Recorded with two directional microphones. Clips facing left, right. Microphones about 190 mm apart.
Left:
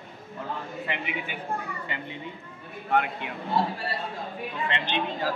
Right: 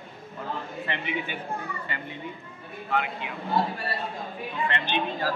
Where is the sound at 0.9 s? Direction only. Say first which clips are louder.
Even; 10° left (ahead or behind).